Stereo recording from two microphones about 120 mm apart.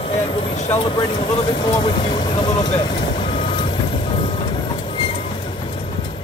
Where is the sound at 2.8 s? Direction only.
40° left (ahead or behind).